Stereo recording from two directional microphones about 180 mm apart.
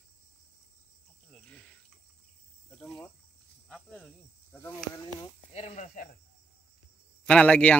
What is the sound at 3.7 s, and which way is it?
Snake, 5° left (ahead or behind).